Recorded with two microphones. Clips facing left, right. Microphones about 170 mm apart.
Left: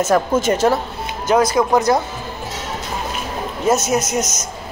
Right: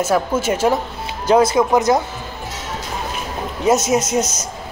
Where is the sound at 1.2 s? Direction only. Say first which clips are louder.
Right 2 dB; 30° right (ahead or behind).